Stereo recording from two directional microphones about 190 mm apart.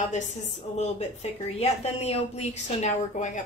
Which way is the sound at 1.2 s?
35° left (ahead or behind).